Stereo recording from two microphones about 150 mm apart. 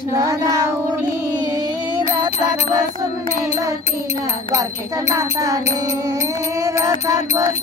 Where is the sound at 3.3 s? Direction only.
15° right (ahead or behind).